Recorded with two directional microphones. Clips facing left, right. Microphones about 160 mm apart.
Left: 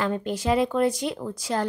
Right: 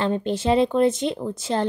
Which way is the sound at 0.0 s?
25° right (ahead or behind).